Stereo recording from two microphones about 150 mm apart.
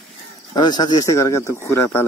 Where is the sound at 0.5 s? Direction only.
25° left (ahead or behind).